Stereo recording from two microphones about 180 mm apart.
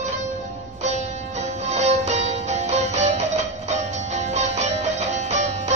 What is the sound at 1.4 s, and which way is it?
Music, 40° right (ahead or behind).